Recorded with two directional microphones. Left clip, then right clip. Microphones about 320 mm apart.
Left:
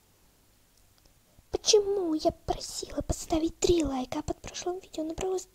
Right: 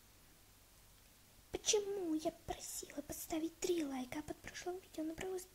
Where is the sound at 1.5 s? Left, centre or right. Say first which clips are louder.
Left 13 dB; centre.